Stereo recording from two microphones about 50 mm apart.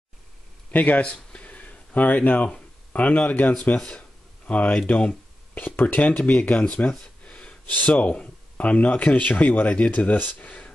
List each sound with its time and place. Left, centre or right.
0.7 s speech: left
1.0 s a sound: left
2.9 s speech: left
3.7 s speech: centre
4.5 s speech: left